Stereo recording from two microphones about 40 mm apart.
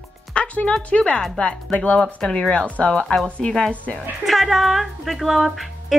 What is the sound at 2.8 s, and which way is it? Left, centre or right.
Speech, left.